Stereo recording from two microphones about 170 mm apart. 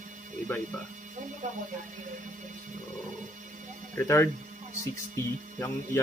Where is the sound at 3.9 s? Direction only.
15° left (ahead or behind).